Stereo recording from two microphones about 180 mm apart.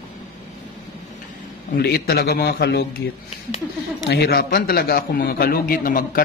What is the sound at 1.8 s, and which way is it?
A man's voice, 60° left (ahead or behind).